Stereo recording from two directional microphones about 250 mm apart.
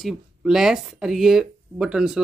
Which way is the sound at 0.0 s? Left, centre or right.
Centre.